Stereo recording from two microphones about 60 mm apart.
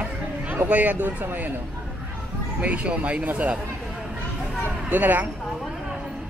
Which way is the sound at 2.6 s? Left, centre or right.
Right.